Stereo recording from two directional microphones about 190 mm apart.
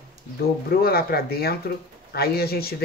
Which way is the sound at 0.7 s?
55° left (ahead or behind).